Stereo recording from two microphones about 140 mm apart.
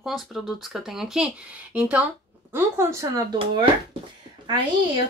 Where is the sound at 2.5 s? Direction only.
20° right (ahead or behind).